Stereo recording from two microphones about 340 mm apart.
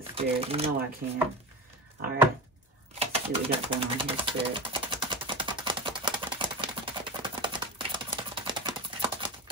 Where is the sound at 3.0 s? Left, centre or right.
Centre.